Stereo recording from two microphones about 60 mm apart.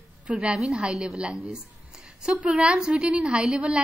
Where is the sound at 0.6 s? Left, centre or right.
Centre.